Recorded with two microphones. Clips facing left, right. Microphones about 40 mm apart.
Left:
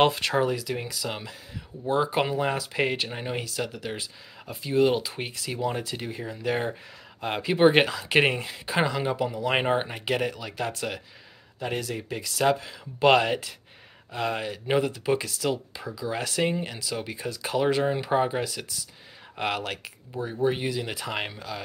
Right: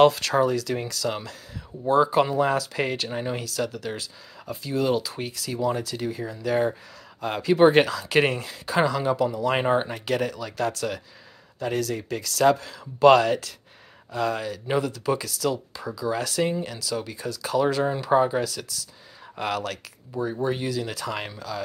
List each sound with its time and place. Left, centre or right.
0.0 s speech: left